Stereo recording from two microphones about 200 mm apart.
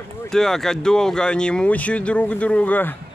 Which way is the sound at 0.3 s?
Centre (ahead or behind).